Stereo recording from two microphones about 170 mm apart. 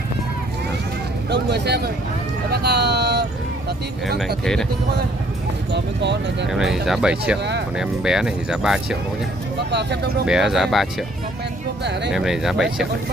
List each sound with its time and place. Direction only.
1.3 s speech: 75° right (ahead or behind)
5.7 s speech: 90° right
6.5 s speech: 5° right (ahead or behind)
9.7 s speech: 80° right
10.2 s speech: 5° right (ahead or behind)
12.1 s speech: centre (ahead or behind)